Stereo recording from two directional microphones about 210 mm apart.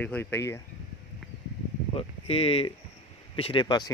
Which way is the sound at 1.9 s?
25° left (ahead or behind).